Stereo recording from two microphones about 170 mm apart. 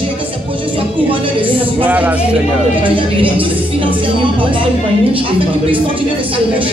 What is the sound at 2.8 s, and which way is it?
Speech, 30° right (ahead or behind).